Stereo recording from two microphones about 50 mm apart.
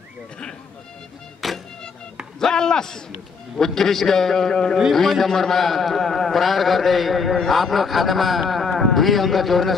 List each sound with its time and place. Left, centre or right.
1.4 s music: centre
2.4 s a man's voice: centre